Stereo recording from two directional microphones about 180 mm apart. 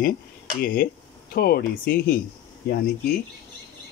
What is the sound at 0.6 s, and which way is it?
Speech, 50° left (ahead or behind).